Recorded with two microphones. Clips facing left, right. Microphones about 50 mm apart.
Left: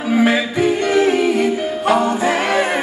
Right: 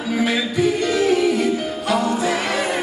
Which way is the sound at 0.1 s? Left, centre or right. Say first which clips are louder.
Left 5 dB; left.